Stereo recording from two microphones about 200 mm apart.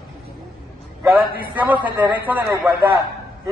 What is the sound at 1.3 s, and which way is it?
A man's voice, 10° right (ahead or behind).